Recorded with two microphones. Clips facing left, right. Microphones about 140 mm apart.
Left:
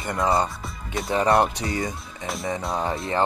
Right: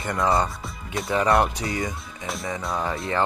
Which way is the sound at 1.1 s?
25° left (ahead or behind).